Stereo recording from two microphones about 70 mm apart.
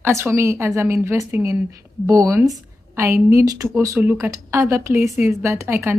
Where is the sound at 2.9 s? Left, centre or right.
Right.